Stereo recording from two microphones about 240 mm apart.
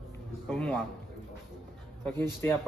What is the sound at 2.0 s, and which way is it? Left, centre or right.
Speech, centre.